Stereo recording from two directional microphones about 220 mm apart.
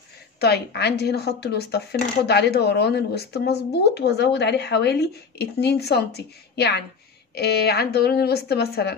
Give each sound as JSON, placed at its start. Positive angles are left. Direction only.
{"t": 0.4, "sound": "speech", "side_deg": 50}